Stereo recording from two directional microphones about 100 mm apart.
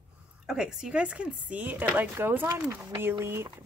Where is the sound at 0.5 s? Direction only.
5° right (ahead or behind).